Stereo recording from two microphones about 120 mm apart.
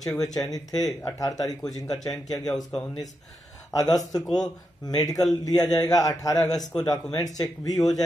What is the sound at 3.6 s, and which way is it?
A man's voice, 30° left (ahead or behind).